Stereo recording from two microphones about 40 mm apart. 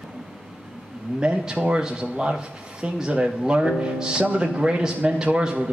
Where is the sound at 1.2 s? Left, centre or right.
Right.